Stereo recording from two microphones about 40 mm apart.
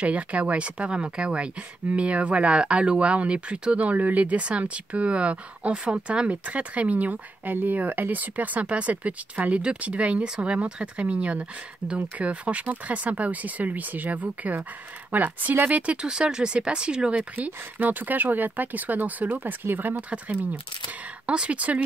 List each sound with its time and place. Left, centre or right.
0.0 s speech: right
3.9 s speech: right
6.2 s speech: right
15.8 s speech: right
16.1 s speech: centre
17.4 s speech: right
19.3 s speech: right
20.0 s speech: right
21.3 s speech: right